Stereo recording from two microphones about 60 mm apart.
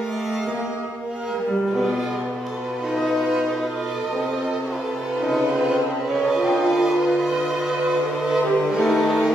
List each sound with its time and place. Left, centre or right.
6.2 s music: centre
8.8 s music: centre